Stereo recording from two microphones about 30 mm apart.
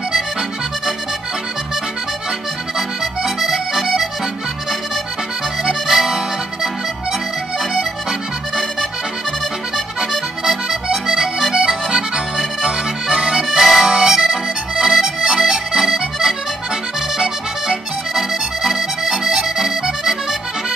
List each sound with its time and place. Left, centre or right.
3.0 s accordion: centre
5.6 s accordion: centre
9.9 s accordion: centre
14.1 s accordion: centre
15.8 s accordion: centre